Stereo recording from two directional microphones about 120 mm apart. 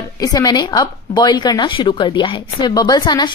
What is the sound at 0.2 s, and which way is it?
A woman's voice, 30° left (ahead or behind).